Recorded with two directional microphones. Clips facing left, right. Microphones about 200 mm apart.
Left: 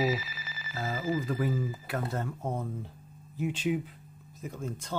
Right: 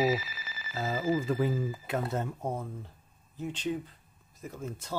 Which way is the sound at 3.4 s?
10° left (ahead or behind).